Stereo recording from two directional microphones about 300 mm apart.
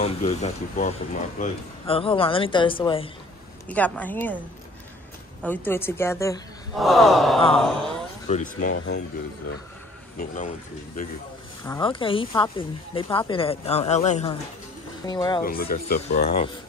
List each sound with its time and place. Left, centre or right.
0.0 s speech: centre
3.6 s gasp: centre
5.4 s speech: centre
6.7 s gasp: centre
8.3 s speech: left
8.7 s speech: left
10.1 s speech: left
11.6 s speech: centre
15.4 s speech: left